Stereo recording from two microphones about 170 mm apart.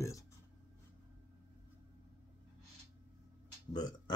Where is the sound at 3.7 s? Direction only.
25° left (ahead or behind).